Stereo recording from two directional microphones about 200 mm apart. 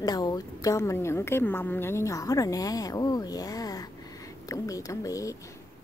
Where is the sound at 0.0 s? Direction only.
20° left (ahead or behind).